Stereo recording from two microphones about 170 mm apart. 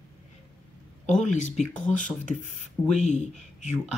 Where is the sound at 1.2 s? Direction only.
45° left (ahead or behind).